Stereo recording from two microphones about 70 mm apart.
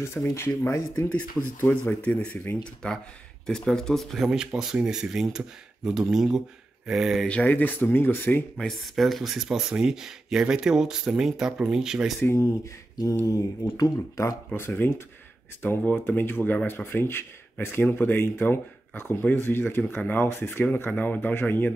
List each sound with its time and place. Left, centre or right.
0.0 s speech: left
1.0 s speech: centre
4.3 s speech: centre
7.2 s speech: left
8.5 s speech: centre
12.2 s speech: left
13.2 s speech: left
14.7 s speech: left